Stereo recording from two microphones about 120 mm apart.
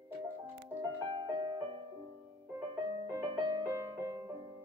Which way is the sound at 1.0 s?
40° right (ahead or behind).